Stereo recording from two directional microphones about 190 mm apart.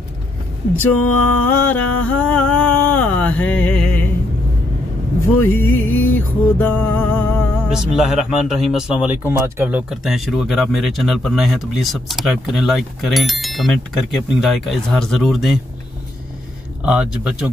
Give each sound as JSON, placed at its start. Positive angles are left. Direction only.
{"t": 1.1, "sound": "humming", "side_deg": 10}
{"t": 5.4, "sound": "music", "side_deg": 10}
{"t": 5.7, "sound": "music", "side_deg": 90}
{"t": 6.1, "sound": "music", "side_deg": 10}
{"t": 7.7, "sound": "speech", "side_deg": 0}
{"t": 16.8, "sound": "speech", "side_deg": -5}